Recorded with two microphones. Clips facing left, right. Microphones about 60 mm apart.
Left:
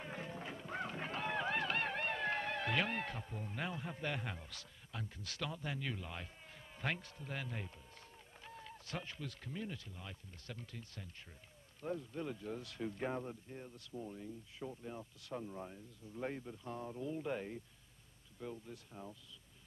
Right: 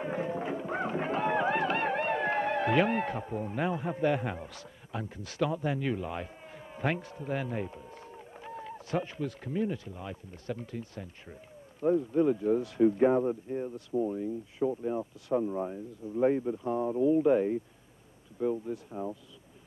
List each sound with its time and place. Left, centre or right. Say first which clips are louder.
0.0 s music: right 13 dB; centre
5.0 s a man's voice: right 14 dB; centre